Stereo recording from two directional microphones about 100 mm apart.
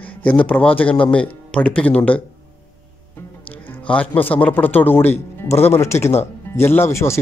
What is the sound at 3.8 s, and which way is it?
Speech, 15° left (ahead or behind).